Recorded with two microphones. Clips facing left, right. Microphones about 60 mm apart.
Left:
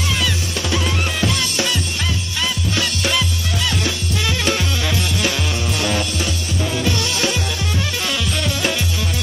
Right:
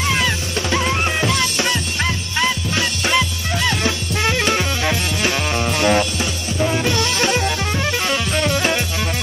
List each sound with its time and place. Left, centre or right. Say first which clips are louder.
0.1 s music: right 2 dB; right